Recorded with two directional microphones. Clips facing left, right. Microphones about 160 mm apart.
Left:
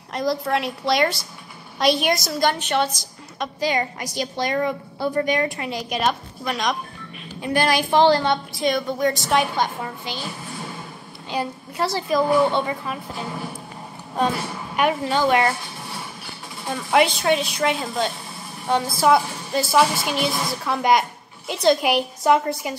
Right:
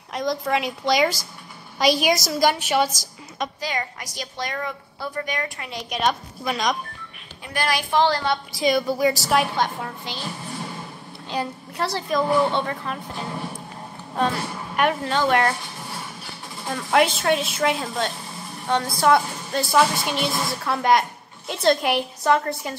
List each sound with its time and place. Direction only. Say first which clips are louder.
0.1 s a woman's voice: left 1 dB; centre (ahead or behind)
3.6 s a woman's voice: left 6 dB; 25° left (ahead or behind)
5.7 s a woman's voice: left 1 dB; centre (ahead or behind)
7.9 s a woman's voice: left 4 dB; 25° left (ahead or behind)
8.2 s a woman's voice: left 2 dB; centre (ahead or behind)
11.2 s a woman's voice: left 1 dB; centre (ahead or behind)
14.8 s a woman's voice: left 1 dB; 5° left (ahead or behind)
16.6 s a woman's voice: left 1 dB; 5° left (ahead or behind)
22.2 s a woman's voice: left 2 dB; 15° left (ahead or behind)
22.5 s a woman's voice: left 2 dB; centre (ahead or behind)